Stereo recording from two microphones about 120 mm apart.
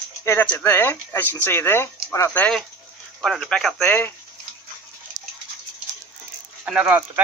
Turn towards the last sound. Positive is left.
turn(degrees=-10)  # may be behind; listen again after turning